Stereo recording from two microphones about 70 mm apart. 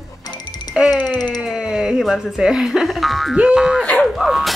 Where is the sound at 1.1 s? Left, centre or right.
Left.